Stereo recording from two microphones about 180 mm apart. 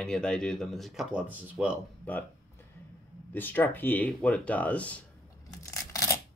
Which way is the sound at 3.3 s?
10° left (ahead or behind).